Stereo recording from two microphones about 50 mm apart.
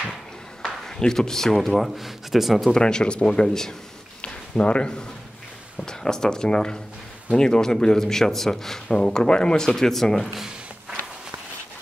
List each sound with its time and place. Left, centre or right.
0.8 s speech: centre
2.0 s speech: centre
2.7 s speech: centre
4.2 s a sound: left
5.9 s speech: centre
10.3 s a sound: centre